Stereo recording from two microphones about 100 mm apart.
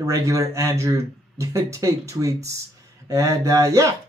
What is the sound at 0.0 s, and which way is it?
Speech, 30° right (ahead or behind).